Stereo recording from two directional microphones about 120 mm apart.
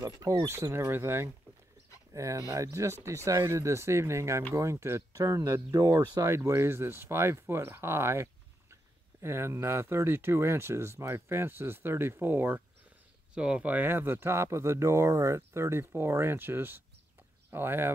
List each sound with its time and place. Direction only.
0.0 s speech: 30° right (ahead or behind)